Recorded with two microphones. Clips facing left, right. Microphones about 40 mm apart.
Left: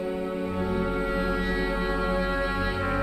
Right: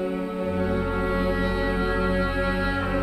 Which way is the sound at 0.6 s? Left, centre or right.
Centre.